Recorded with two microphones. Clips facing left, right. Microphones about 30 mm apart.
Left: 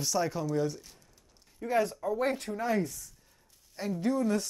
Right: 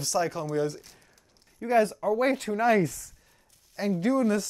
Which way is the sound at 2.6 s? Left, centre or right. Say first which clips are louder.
Right 9 dB; right.